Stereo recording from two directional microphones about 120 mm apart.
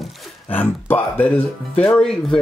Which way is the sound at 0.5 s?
15° left (ahead or behind).